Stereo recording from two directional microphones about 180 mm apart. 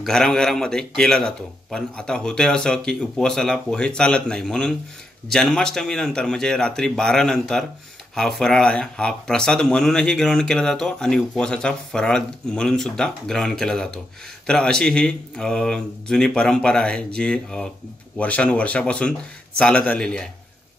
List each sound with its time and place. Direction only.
0.0 s speech: centre (ahead or behind)